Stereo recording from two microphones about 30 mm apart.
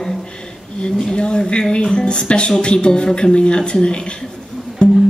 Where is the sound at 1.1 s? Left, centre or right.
Left.